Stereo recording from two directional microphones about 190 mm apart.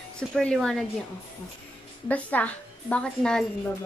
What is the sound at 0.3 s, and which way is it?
Speech, 5° left (ahead or behind).